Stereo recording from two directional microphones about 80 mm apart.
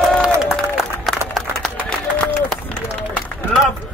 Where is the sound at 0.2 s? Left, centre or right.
Centre.